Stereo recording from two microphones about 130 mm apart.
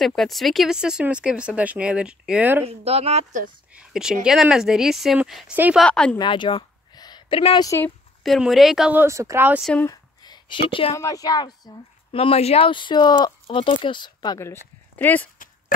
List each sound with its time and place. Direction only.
0.0 s speech: centre (ahead or behind)
2.6 s speech: 50° right (ahead or behind)
3.7 s speech: 5° right (ahead or behind)
5.8 s a woman's voice: 5° left (ahead or behind)
6.1 s a sound: 35° left (ahead or behind)
7.5 s a woman's voice: 25° left (ahead or behind)
8.2 s speech: centre (ahead or behind)
8.9 s speech: 20° right (ahead or behind)
9.8 s a sound: 30° left (ahead or behind)
11.0 s a woman's voice: 25° left (ahead or behind)
12.1 s speech: 45° left (ahead or behind)
14.4 s speech: 15° left (ahead or behind)